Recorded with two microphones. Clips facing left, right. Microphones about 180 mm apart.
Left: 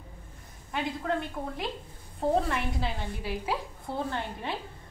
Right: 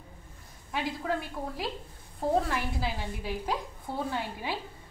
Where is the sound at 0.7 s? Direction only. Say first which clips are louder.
Left 1 dB; centre (ahead or behind).